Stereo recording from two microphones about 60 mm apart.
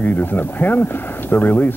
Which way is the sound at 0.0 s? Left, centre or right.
Left.